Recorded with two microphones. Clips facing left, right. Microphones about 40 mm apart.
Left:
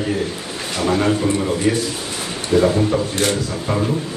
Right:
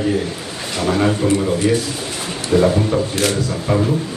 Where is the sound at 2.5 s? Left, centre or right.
Centre.